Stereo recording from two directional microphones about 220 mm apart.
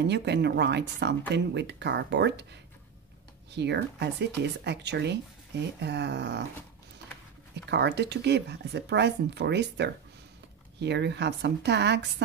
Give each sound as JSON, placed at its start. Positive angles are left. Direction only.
{"t": 0.0, "sound": "speech", "side_deg": -50}
{"t": 3.5, "sound": "speech", "side_deg": -50}
{"t": 7.7, "sound": "speech", "side_deg": -50}